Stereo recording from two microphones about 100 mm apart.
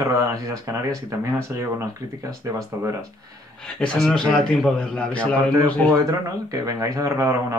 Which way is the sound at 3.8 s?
10° left (ahead or behind).